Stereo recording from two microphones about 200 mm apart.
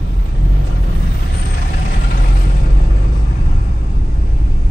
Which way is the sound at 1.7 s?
45° left (ahead or behind).